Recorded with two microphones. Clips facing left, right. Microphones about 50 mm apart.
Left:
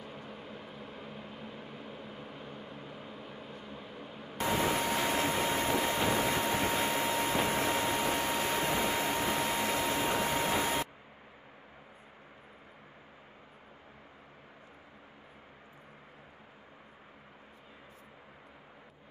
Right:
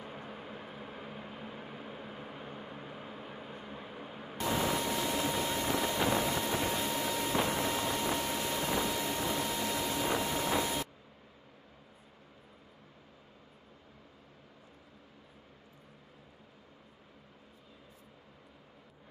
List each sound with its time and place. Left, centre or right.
0.0 s vehicle: centre
4.4 s vehicle: left